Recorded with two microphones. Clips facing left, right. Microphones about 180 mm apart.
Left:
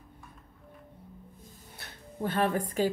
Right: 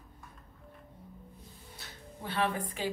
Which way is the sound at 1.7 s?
50° left (ahead or behind).